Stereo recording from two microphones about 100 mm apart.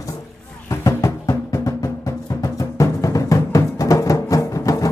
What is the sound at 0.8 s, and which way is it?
Music, 35° left (ahead or behind).